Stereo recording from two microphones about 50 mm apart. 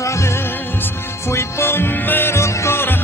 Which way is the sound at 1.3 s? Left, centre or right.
Left.